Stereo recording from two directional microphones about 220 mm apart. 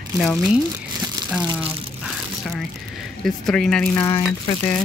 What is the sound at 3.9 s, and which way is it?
Speech, 20° left (ahead or behind).